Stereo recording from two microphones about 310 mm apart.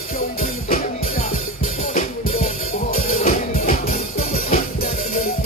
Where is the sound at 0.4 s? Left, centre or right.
Left.